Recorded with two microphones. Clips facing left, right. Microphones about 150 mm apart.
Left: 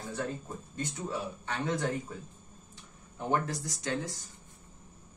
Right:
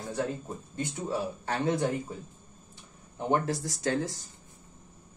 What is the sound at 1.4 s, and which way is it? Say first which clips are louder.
Speech: right 4 dB; 35° right (ahead or behind).